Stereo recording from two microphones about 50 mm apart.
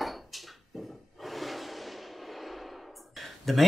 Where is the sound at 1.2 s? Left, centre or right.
Centre.